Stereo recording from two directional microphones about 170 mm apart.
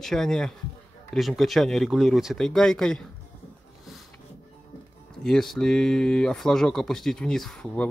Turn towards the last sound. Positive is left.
turn(degrees=5)  # may be behind; listen again after turning